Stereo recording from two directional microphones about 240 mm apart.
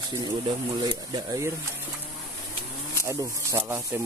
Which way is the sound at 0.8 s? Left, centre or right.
Centre.